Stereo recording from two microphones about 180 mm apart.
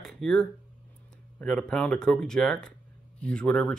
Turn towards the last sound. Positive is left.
turn(degrees=5)  # may be behind; listen again after turning